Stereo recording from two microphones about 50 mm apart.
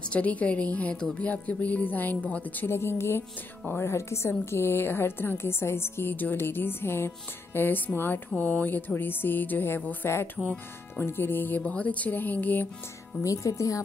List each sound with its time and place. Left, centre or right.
0.0 s a woman's voice: left
1.1 s music: left
2.6 s a woman's voice: left
3.8 s a woman's voice: left
4.3 s a woman's voice: left
7.5 s music: left
10.0 s a woman's voice: left
11.6 s music: left
13.2 s speech: left